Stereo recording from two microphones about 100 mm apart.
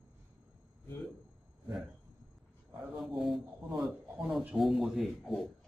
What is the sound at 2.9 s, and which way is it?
Speech, centre (ahead or behind).